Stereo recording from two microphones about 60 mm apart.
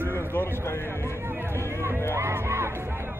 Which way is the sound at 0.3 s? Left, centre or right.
Left.